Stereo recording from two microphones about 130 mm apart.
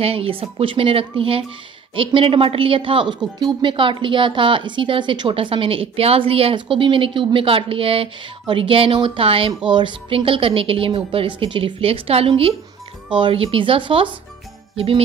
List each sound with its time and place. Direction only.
0.0 s a woman's voice: 45° right (ahead or behind)